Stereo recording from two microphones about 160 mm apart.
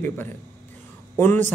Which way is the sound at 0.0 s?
15° left (ahead or behind).